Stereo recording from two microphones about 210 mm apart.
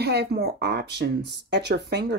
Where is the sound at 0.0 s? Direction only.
50° right (ahead or behind).